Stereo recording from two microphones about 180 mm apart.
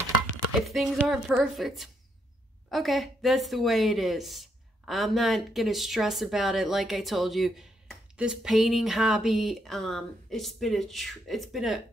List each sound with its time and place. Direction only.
0.7 s a woman's voice: centre (ahead or behind)